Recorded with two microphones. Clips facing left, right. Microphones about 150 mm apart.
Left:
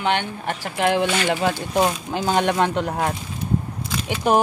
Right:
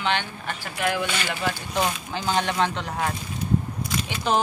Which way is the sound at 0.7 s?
25° left (ahead or behind).